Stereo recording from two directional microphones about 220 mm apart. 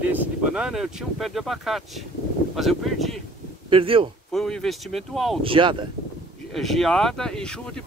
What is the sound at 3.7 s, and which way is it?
Speech, 25° right (ahead or behind).